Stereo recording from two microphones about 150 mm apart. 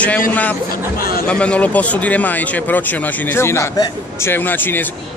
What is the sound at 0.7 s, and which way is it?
Speech, 75° left (ahead or behind).